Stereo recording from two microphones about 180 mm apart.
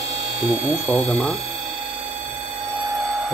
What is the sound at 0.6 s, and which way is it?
Speech, 10° left (ahead or behind).